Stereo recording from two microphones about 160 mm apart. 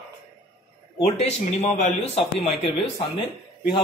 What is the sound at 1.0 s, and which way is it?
Speech, 40° left (ahead or behind).